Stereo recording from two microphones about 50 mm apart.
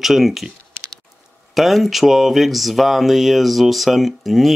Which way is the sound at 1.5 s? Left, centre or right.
Centre.